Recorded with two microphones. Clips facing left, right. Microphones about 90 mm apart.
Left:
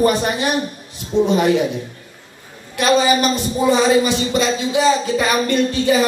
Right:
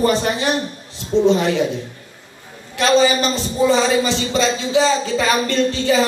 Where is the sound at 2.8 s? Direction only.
15° left (ahead or behind).